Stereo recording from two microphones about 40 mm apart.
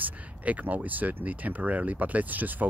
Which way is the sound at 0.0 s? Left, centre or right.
Right.